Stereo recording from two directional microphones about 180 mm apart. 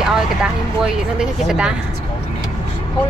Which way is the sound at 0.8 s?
5° right (ahead or behind).